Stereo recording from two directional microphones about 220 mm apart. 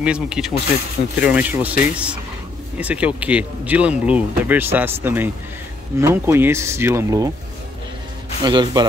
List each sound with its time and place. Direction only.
0.0 s speech: 5° right (ahead or behind)
8.4 s speech: 20° right (ahead or behind)